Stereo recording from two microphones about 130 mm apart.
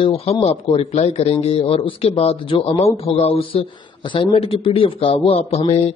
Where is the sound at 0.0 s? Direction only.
45° left (ahead or behind).